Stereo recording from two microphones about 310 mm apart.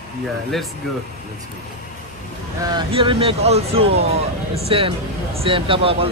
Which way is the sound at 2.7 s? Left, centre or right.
Centre.